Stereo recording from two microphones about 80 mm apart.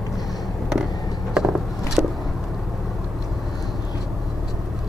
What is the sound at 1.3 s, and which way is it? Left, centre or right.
Vehicle, centre.